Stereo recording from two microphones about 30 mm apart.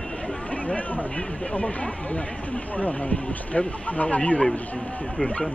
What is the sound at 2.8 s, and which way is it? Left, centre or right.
Speech, left.